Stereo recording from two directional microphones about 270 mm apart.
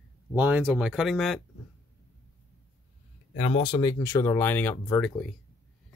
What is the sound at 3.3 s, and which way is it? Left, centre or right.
Speech, left.